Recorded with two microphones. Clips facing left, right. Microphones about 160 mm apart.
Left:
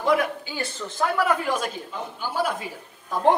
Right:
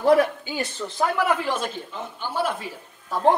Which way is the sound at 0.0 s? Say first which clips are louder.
Right 5 dB; 35° right (ahead or behind).